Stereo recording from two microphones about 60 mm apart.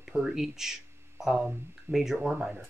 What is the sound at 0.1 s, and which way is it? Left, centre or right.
Speech, centre.